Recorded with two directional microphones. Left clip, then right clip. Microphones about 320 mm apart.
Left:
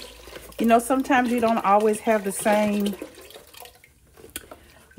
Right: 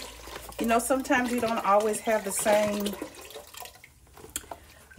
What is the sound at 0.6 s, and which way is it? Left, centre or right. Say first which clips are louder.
Speech: left 6 dB; left.